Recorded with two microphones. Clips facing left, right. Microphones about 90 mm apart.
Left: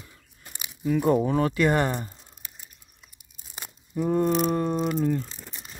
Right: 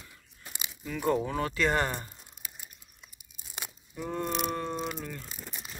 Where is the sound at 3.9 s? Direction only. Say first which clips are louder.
Left 10 dB; 30° left (ahead or behind).